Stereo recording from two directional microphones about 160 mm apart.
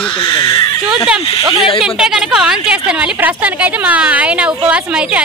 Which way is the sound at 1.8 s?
5° right (ahead or behind).